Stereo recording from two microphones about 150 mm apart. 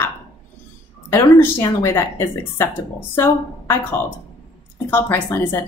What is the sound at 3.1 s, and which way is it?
Speech, 15° left (ahead or behind).